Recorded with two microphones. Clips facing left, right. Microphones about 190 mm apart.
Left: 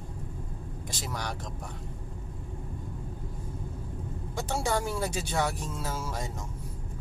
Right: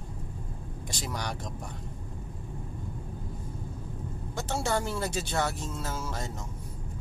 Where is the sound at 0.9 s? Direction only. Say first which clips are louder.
Right 1 dB; centre (ahead or behind).